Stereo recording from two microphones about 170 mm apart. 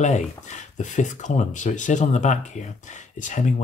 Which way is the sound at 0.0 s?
45° left (ahead or behind).